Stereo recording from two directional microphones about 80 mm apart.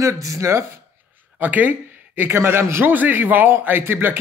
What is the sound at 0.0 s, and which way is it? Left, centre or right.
Speech, right.